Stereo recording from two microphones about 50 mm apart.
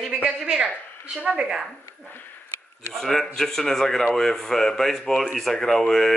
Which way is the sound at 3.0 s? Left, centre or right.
Centre.